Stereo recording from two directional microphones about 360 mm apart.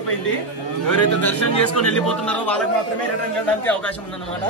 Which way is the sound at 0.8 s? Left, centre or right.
Left.